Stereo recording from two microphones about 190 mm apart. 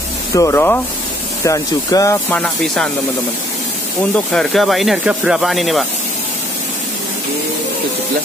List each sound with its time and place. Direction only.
0.3 s speech: 15° left (ahead or behind)
2.3 s speech: 5° left (ahead or behind)
4.1 s speech: 5° left (ahead or behind)